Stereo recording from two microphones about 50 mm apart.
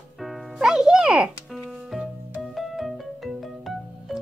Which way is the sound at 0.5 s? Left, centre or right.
Centre.